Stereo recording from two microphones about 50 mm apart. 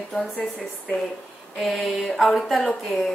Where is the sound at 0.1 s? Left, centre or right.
Centre.